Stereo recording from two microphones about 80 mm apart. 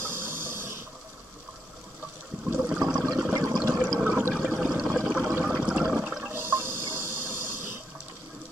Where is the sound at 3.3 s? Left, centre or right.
Right.